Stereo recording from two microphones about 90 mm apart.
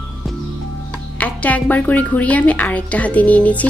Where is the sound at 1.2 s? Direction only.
15° left (ahead or behind).